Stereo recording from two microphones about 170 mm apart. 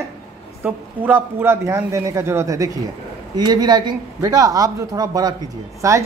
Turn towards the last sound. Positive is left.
turn(degrees=-20)  # may be behind; listen again after turning